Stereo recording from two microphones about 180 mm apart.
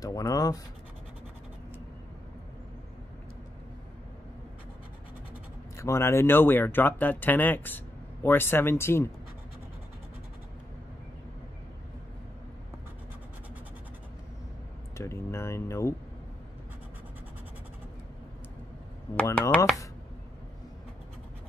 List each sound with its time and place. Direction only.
0.0 s speech: 20° left (ahead or behind)
5.8 s speech: 15° left (ahead or behind)
15.0 s speech: 15° left (ahead or behind)
19.2 s speech: 15° left (ahead or behind)